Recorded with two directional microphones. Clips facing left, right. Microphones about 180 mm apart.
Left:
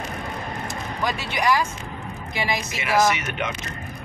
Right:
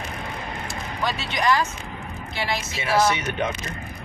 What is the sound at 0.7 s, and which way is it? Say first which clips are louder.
Speech: even; 10° left (ahead or behind).